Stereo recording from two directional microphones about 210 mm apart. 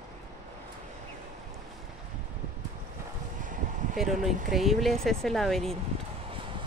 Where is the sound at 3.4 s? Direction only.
40° right (ahead or behind).